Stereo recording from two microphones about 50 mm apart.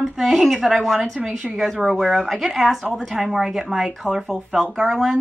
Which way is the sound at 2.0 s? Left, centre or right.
Centre.